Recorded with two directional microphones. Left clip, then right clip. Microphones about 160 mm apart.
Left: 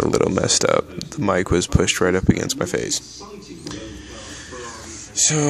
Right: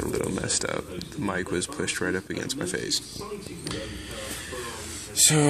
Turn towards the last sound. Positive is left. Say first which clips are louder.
# left 2 dB
turn(degrees=5)  # may be behind; listen again after turning